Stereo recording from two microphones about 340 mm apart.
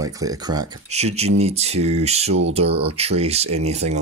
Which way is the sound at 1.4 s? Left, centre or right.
Centre.